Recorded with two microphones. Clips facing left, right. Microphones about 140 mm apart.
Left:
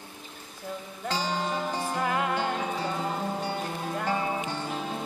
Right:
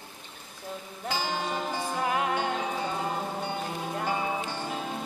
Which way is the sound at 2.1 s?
20° right (ahead or behind).